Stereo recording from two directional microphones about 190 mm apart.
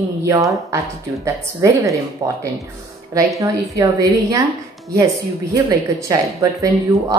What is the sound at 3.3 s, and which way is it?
Speech, 15° right (ahead or behind).